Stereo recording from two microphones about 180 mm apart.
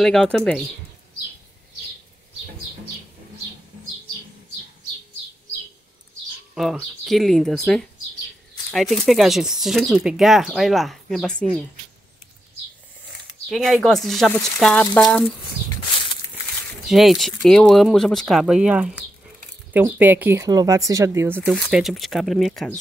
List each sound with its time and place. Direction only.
0.0 s speech: 5° left (ahead or behind)
6.5 s speech: centre (ahead or behind)
13.5 s speech: centre (ahead or behind)
16.8 s speech: centre (ahead or behind)